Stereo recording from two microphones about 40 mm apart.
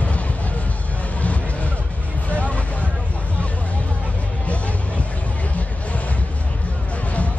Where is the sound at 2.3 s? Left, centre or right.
Left.